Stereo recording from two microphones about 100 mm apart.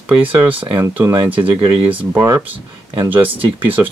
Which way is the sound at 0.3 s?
20° right (ahead or behind).